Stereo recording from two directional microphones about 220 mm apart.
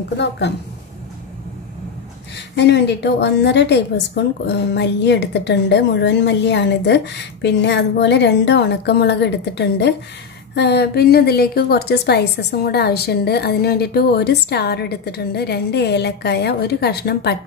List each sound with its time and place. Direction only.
0.2 s a woman's voice: 50° left (ahead or behind)
2.5 s a woman's voice: 50° left (ahead or behind)